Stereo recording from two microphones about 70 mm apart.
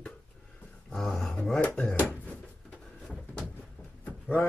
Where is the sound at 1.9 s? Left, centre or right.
Left.